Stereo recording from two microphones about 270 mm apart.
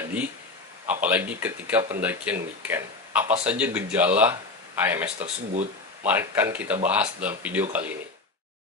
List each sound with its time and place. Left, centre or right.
0.8 s speech: centre
5.2 s speech: right
6.0 s speech: centre